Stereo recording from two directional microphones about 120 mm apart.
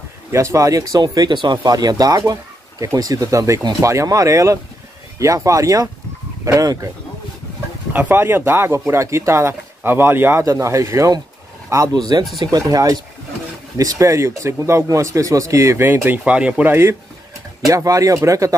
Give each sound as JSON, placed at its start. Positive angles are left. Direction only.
{"t": 0.3, "sound": "a man's voice", "side_deg": -25}
{"t": 7.9, "sound": "a man's voice", "side_deg": -15}
{"t": 17.6, "sound": "a man's voice", "side_deg": -30}